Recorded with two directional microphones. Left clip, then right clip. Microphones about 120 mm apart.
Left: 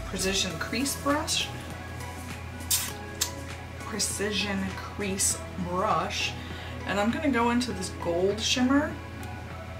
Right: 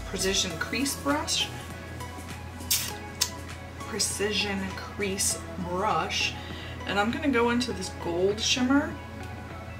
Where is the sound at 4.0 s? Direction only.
5° left (ahead or behind).